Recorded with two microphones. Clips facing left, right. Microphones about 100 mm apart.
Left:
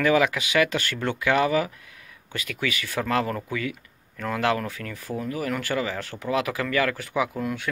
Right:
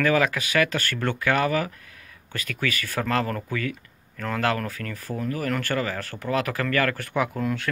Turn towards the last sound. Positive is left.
turn(degrees=10)  # may be behind; listen again after turning